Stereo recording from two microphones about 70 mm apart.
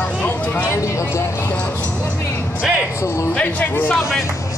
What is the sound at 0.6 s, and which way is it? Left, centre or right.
Vehicle, left.